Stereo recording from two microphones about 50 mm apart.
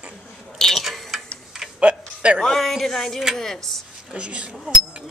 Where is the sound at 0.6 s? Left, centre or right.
Centre.